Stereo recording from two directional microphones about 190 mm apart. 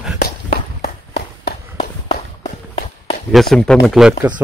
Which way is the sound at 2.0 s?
30° left (ahead or behind).